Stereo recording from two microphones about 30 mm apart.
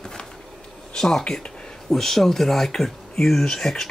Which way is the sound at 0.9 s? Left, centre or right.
Centre.